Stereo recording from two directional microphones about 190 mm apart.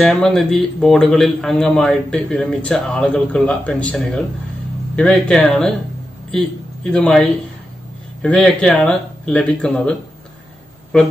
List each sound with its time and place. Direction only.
0.0 s a man's voice: 5° left (ahead or behind)